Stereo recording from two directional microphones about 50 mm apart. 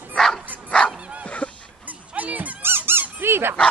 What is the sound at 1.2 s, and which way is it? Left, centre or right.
Goose, left.